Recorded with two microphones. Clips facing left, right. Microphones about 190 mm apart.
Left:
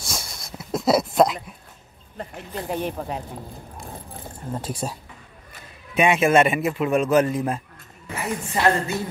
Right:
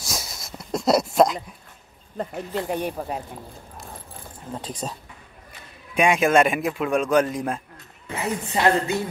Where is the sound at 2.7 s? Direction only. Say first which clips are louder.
Even; 10° right (ahead or behind).